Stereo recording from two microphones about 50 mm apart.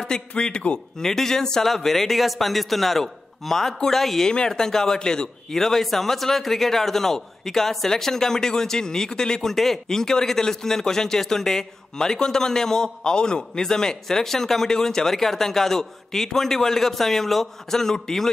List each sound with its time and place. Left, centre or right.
0.4 s a man's voice: centre
1.0 s a man's voice: centre